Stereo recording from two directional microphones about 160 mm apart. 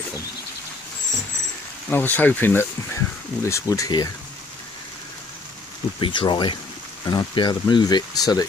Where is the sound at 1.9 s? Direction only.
10° left (ahead or behind).